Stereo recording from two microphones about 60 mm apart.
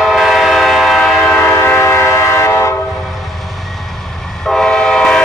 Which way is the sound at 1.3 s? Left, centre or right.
Left.